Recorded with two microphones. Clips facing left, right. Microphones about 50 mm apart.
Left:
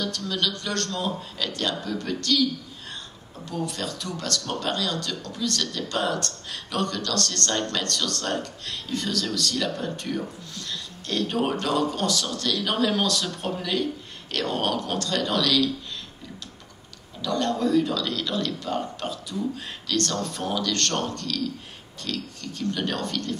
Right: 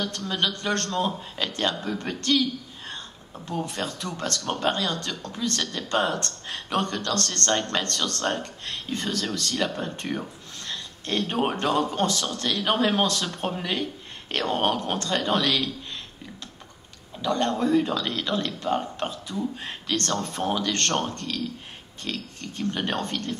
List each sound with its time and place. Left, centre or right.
0.0 s speech: right
3.4 s speech: right
17.2 s speech: right